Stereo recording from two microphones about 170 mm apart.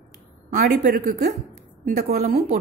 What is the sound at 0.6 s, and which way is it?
Speech, 60° right (ahead or behind).